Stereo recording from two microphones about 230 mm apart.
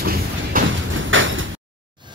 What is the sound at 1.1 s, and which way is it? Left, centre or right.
Sliding door, right.